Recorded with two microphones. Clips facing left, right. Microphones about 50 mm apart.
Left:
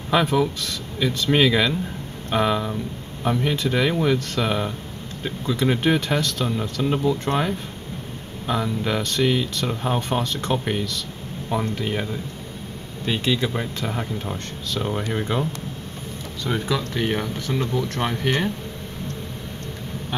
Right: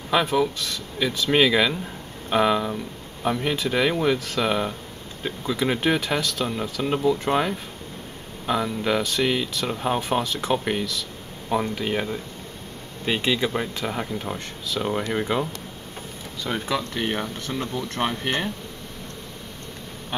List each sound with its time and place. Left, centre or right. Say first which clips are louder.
0.1 s speech: left 1 dB; centre
16.6 s speech: left 1 dB; centre
17.5 s speech: left 5 dB; centre
18.0 s speech: right 3 dB; centre